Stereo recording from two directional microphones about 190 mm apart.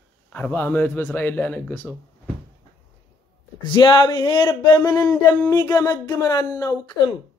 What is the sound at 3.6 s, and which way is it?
Speech, 25° left (ahead or behind).